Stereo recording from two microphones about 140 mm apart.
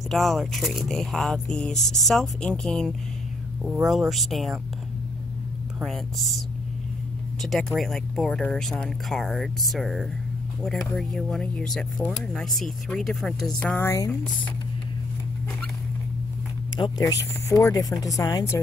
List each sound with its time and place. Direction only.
0.1 s speech: centre (ahead or behind)
5.8 s speech: centre (ahead or behind)
7.4 s speech: centre (ahead or behind); by 14.1 s 20° left (ahead or behind)
16.7 s speech: 30° left (ahead or behind)